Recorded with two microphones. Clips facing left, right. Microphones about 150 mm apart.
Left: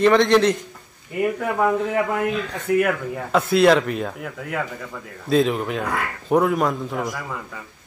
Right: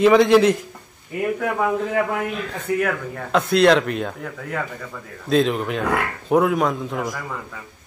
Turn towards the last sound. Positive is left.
turn(degrees=0)  # may be behind; listen again after turning